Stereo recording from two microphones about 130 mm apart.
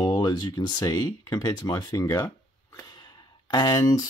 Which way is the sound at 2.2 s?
20° left (ahead or behind).